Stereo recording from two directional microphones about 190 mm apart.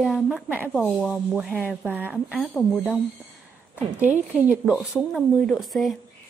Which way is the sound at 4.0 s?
10° right (ahead or behind).